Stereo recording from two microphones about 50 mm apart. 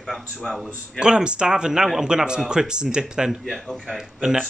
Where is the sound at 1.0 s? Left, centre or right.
Centre.